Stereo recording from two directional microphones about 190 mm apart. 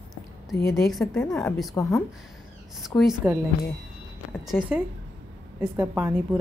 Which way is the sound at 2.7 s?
Centre (ahead or behind).